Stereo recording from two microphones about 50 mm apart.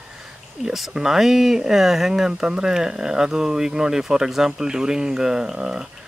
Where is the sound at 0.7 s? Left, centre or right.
Centre.